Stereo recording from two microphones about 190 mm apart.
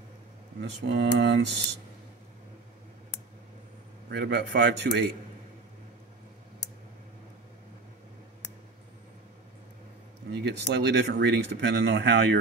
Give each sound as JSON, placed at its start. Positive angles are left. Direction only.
{"t": 0.6, "sound": "speech", "side_deg": -65}
{"t": 4.1, "sound": "speech", "side_deg": -60}
{"t": 10.3, "sound": "speech", "side_deg": -60}